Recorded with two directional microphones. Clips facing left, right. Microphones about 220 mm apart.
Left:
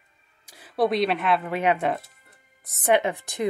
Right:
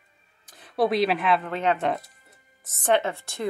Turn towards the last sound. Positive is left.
turn(degrees=15)  # may be behind; listen again after turning